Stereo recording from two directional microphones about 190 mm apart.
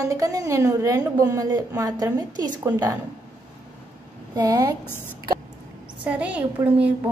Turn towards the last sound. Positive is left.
turn(degrees=-5)  # may be behind; listen again after turning